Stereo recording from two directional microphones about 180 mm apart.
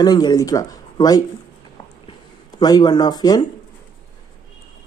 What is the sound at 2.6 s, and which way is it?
Speech, 20° left (ahead or behind).